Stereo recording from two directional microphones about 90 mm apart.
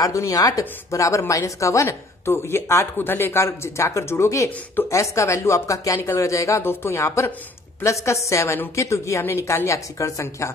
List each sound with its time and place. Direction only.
0.0 s speech: 40° left (ahead or behind)